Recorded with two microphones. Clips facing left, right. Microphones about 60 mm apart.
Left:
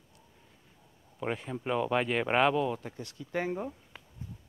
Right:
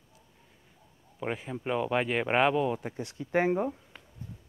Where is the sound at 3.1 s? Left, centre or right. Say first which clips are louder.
Right 7 dB; right.